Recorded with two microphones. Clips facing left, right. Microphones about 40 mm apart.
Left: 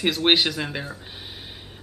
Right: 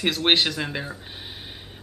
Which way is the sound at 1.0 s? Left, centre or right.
Centre.